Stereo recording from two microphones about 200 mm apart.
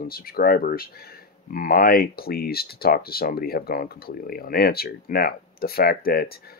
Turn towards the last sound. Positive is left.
turn(degrees=50)  # may be behind; listen again after turning